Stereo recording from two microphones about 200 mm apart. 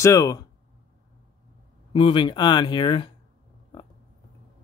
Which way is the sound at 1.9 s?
25° left (ahead or behind).